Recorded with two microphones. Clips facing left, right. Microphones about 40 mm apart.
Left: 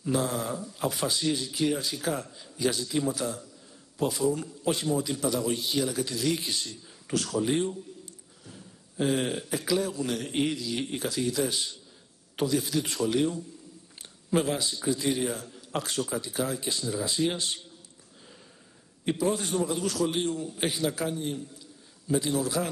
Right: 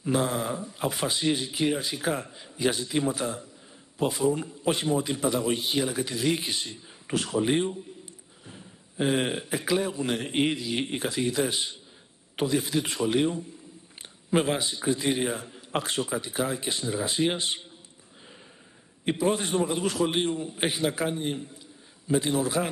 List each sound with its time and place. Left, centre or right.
0.0 s a man's voice: right
19.2 s a man's voice: right